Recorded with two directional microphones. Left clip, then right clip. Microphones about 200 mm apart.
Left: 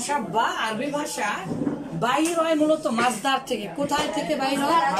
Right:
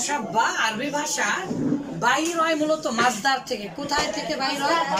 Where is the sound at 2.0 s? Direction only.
10° left (ahead or behind).